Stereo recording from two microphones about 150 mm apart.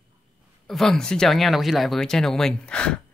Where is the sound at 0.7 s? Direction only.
5° left (ahead or behind).